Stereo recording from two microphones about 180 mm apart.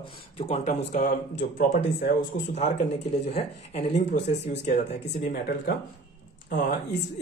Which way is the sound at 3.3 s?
35° left (ahead or behind).